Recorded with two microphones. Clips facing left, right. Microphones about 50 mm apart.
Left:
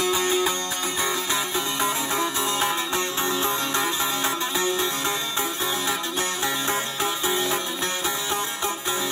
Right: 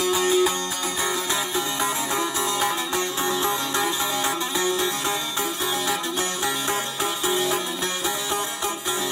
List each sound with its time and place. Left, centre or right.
0.0 s music: left
1.8 s music: left
7.2 s music: left